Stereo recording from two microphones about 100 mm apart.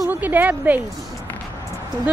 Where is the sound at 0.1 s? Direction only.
15° right (ahead or behind).